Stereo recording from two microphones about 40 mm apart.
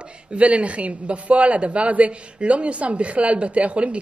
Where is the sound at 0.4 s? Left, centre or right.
Right.